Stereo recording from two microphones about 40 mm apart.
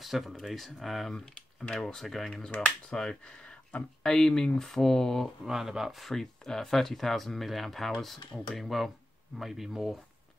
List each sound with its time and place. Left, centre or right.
0.0 s speech: centre
1.1 s speech: centre
2.0 s speech: centre
2.6 s speech: centre
5.4 s speech: centre
5.9 s speech: centre